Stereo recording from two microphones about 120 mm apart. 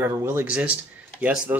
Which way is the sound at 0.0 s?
20° right (ahead or behind).